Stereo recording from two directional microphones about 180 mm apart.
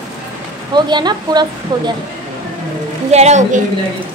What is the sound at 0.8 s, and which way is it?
A woman's voice, 25° right (ahead or behind).